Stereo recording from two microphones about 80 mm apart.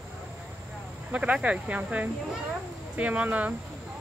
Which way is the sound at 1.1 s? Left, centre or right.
Centre.